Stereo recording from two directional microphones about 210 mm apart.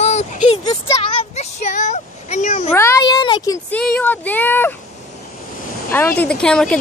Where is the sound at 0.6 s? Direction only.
20° left (ahead or behind); by 2.7 s 35° left (ahead or behind).